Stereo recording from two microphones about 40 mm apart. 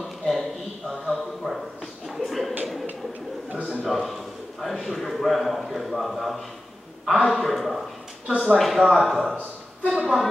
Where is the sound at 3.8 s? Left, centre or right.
Centre.